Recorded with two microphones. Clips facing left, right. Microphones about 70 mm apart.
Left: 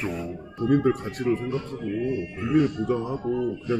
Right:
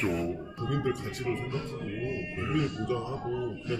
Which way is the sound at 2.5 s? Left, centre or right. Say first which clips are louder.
Left 8 dB; left.